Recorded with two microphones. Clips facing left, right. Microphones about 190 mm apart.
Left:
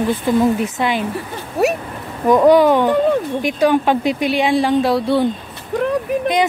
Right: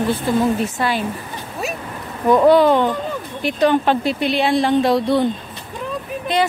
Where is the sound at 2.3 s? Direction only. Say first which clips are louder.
Left 1 dB; 10° left (ahead or behind).